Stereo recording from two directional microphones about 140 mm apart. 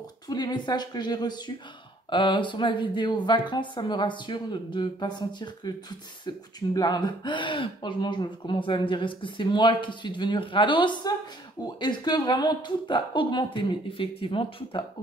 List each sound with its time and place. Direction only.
0.3 s speech: 30° left (ahead or behind)